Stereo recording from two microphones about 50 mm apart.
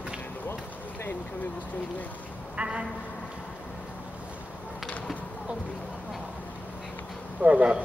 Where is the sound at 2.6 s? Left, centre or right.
Centre.